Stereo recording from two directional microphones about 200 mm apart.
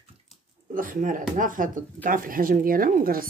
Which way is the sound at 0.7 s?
40° right (ahead or behind).